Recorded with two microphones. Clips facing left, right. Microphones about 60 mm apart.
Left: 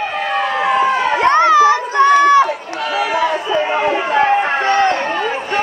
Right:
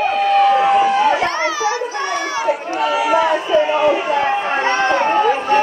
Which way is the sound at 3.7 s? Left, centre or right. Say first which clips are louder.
Right 1 dB; left.